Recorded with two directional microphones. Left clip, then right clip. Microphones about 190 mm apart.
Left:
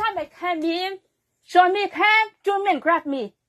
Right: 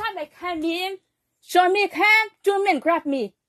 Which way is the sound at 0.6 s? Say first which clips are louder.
Right 2 dB; 15° right (ahead or behind).